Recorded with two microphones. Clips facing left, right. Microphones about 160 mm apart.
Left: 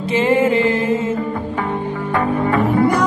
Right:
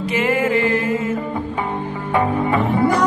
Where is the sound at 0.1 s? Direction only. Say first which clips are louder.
Left 4 dB; 30° left (ahead or behind).